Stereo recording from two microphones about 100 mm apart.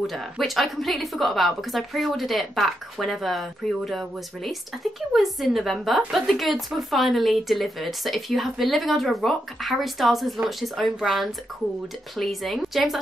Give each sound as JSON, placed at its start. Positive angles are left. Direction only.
{"t": 0.0, "sound": "a woman's voice", "side_deg": 0}